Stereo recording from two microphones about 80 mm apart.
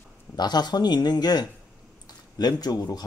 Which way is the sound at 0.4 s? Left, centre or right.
Left.